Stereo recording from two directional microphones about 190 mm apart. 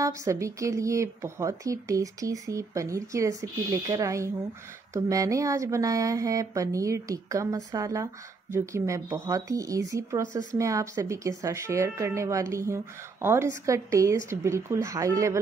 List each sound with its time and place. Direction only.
0.0 s speech: 15° right (ahead or behind)